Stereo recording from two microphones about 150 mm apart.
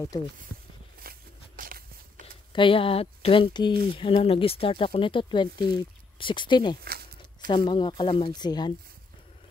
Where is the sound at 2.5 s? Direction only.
35° left (ahead or behind).